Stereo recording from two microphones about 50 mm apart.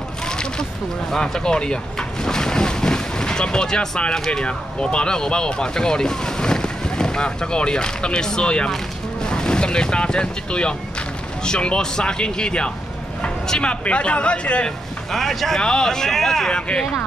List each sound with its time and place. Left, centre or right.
0.3 s a sound: centre
1.1 s boat: centre
4.3 s speech: centre
15.0 s speech: centre
16.5 s speech: centre